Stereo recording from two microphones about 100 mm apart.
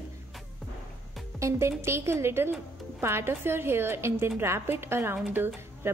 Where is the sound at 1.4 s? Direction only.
25° right (ahead or behind).